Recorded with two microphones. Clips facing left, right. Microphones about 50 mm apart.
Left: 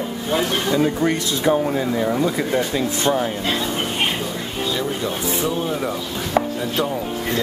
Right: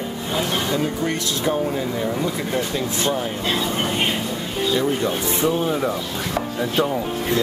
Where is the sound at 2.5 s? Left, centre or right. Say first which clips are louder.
Left 2 dB; left.